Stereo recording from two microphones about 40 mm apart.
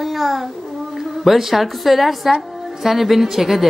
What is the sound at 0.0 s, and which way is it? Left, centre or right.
Child singing, centre.